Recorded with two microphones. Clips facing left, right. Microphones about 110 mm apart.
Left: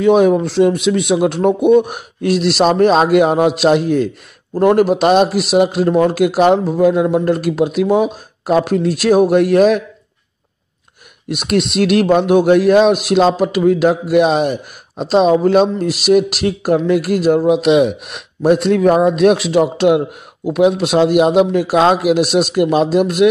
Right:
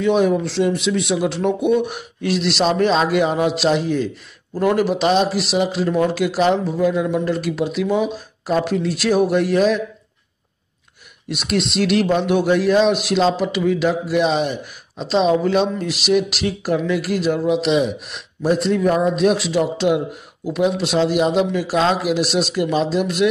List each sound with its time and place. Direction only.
0.0 s a man's voice: 55° left (ahead or behind)
11.2 s a man's voice: 55° left (ahead or behind)